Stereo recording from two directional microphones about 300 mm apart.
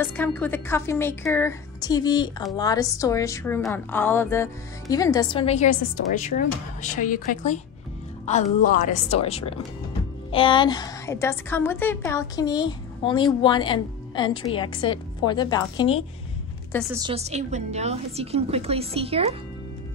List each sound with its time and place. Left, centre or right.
0.0 s a woman's voice: centre
16.9 s a woman's voice: centre